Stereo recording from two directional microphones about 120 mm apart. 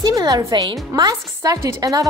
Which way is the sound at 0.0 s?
30° right (ahead or behind).